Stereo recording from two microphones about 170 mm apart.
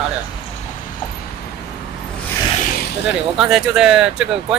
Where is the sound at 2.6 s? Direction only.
55° left (ahead or behind).